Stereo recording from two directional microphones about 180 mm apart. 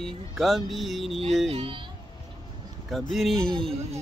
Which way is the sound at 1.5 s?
30° right (ahead or behind).